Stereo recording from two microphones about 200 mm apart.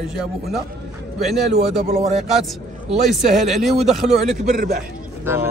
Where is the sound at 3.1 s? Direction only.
Centre (ahead or behind).